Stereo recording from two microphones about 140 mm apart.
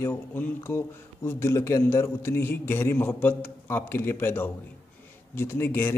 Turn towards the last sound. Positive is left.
turn(degrees=15)  # may be behind; listen again after turning